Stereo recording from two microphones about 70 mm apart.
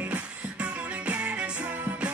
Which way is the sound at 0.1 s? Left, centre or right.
Centre.